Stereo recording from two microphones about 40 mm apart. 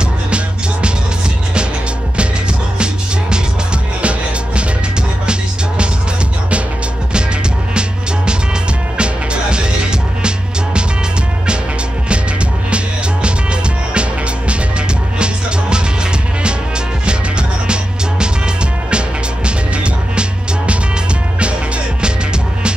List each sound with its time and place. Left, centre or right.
4.0 s music: right
8.9 s music: right
12.7 s music: right
15.1 s music: right
18.9 s music: right